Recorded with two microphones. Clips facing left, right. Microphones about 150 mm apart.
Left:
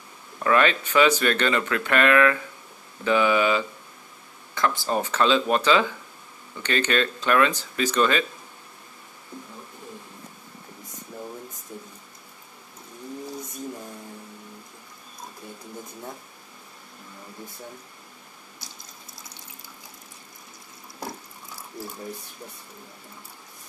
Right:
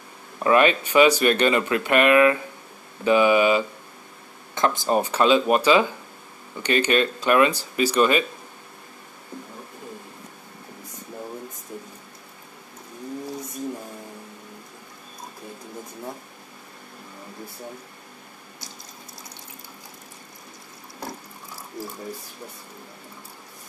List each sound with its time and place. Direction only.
0.4 s speech: 20° right (ahead or behind)